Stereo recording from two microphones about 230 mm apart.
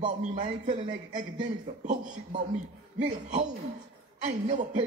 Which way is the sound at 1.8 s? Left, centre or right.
Right.